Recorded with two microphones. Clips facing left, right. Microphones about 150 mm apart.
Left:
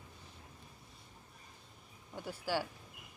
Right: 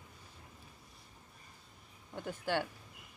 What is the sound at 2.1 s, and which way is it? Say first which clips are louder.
Speech: right 1 dB; 10° left (ahead or behind).